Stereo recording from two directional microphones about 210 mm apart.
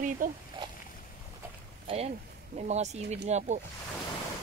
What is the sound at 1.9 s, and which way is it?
Speech, 25° right (ahead or behind).